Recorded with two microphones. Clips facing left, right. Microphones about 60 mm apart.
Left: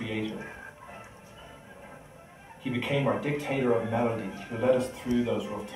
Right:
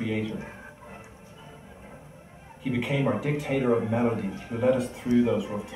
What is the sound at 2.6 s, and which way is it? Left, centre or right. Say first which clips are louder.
Speech: right 2 dB; centre.